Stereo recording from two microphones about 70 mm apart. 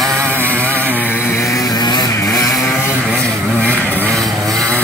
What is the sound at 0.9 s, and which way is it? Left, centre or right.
Vehicle, left.